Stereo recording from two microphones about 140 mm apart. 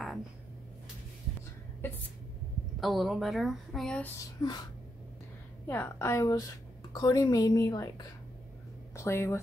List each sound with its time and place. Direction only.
2.8 s a woman's voice: centre (ahead or behind)
4.4 s a woman's voice: 30° left (ahead or behind)
5.7 s a woman's voice: 15° left (ahead or behind)
8.9 s speech: 20° left (ahead or behind)